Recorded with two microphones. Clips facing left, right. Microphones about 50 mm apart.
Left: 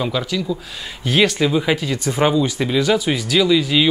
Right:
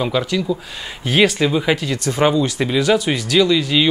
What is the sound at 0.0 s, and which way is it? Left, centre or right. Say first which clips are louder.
Speech: right 2 dB; centre.